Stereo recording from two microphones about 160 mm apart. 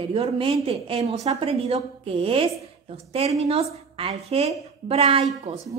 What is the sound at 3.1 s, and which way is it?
A woman's voice, 40° right (ahead or behind).